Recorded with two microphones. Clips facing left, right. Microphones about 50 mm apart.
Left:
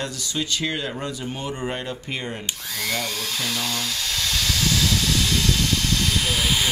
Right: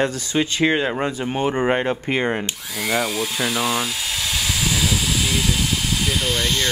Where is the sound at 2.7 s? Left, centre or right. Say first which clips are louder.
Right 7 dB; centre.